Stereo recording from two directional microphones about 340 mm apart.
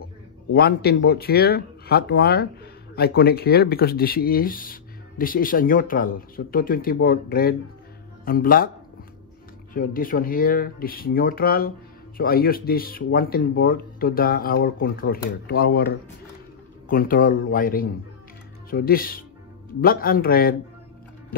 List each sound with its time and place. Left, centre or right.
0.5 s speech: left
9.8 s speech: left